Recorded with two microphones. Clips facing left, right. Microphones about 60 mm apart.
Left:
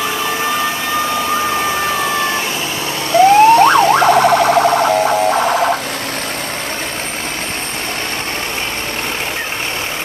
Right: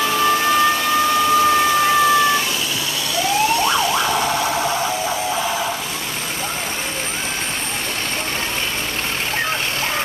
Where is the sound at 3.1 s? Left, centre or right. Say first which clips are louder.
Left 12 dB; left.